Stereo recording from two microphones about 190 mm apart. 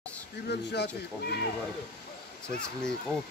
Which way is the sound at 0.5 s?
60° left (ahead or behind).